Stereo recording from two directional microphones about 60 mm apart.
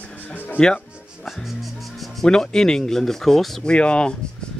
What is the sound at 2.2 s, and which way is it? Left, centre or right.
Speech, centre.